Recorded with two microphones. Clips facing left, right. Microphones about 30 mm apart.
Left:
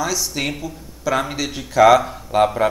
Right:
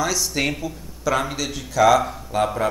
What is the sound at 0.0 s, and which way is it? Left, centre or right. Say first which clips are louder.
Speech: even; centre.